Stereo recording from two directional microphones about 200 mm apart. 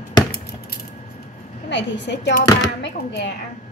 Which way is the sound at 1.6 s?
65° left (ahead or behind).